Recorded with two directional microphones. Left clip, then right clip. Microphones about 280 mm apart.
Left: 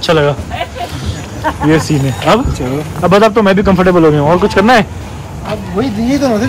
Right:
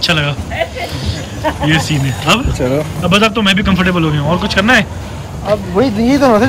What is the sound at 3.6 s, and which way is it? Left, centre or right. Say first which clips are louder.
Speech: left 6 dB; right.